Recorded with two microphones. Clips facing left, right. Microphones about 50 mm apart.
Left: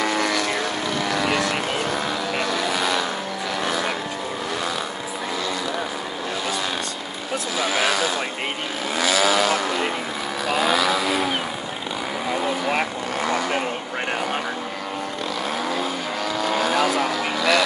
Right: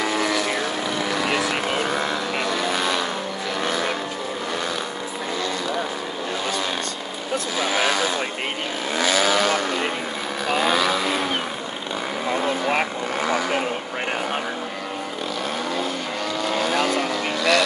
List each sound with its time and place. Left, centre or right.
0.0 s vehicle: centre
8.9 s vehicle: right
12.3 s vehicle: centre
16.3 s vehicle: centre